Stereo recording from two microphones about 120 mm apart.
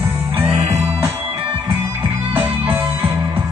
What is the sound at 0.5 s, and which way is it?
Jingle bell, 70° right (ahead or behind).